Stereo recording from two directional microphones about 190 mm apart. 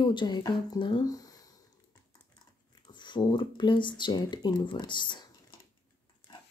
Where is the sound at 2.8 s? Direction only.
25° left (ahead or behind).